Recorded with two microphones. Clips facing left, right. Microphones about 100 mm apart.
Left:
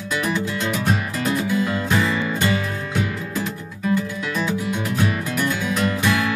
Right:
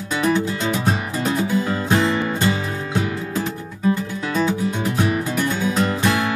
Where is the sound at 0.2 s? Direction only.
35° right (ahead or behind).